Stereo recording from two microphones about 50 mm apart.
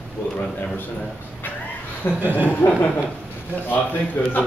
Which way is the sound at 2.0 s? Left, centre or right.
Left.